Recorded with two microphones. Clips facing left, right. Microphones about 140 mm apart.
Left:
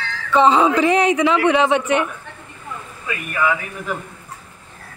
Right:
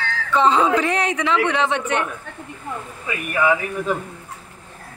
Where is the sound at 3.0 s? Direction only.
20° right (ahead or behind).